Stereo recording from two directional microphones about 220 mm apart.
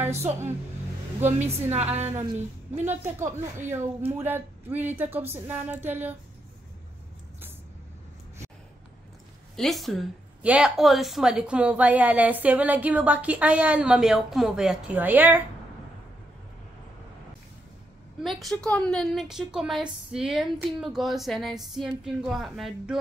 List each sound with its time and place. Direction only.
0.0 s a woman's voice: 10° right (ahead or behind)
1.2 s a woman's voice: 30° right (ahead or behind)
2.8 s speech: 10° right (ahead or behind)
9.6 s a woman's voice: centre (ahead or behind)
18.2 s a woman's voice: centre (ahead or behind)